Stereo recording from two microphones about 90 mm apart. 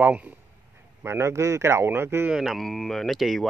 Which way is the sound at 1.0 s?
30° right (ahead or behind).